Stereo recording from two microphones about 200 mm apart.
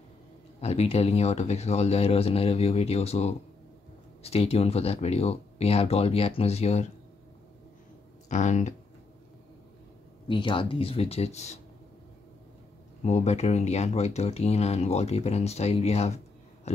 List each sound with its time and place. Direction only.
0.6 s speech: 30° left (ahead or behind)
8.3 s speech: 35° left (ahead or behind)
10.2 s speech: 25° left (ahead or behind)
13.0 s speech: 35° left (ahead or behind)
16.7 s a sound: 30° left (ahead or behind)